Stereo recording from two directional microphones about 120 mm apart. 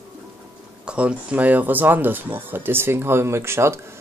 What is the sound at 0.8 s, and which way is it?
Speech, 10° right (ahead or behind).